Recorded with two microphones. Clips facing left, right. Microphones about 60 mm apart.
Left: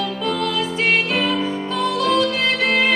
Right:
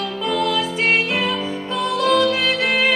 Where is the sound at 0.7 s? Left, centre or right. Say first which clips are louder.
Even; right.